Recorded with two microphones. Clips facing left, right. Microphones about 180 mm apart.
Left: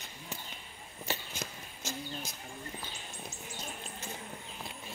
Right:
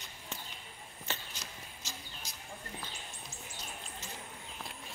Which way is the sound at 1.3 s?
50° left (ahead or behind).